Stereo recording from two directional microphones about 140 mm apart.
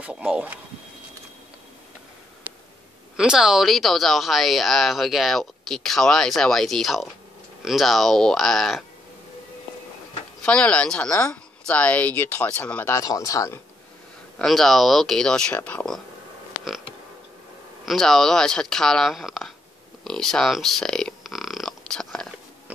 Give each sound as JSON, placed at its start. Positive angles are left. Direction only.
{"t": 0.0, "sound": "speech", "side_deg": -5}
{"t": 3.2, "sound": "speech", "side_deg": -5}
{"t": 10.4, "sound": "speech", "side_deg": 10}
{"t": 11.1, "sound": "speech", "side_deg": 20}
{"t": 11.6, "sound": "speech", "side_deg": 10}
{"t": 14.4, "sound": "speech", "side_deg": 0}
{"t": 17.8, "sound": "speech", "side_deg": 5}
{"t": 20.0, "sound": "a sound", "side_deg": 5}